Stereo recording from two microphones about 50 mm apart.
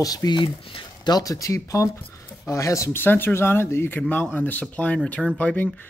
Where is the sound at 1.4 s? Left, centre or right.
Left.